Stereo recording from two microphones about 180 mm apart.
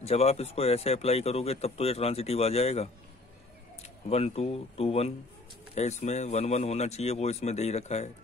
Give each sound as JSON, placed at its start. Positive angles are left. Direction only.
{"t": 0.0, "sound": "speech", "side_deg": 35}